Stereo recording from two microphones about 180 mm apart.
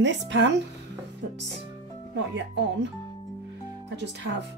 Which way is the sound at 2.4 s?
75° right (ahead or behind).